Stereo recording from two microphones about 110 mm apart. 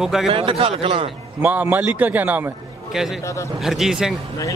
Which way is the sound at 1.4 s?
15° right (ahead or behind).